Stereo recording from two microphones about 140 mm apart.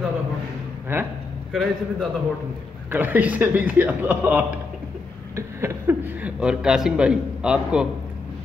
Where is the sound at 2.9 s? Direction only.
10° right (ahead or behind).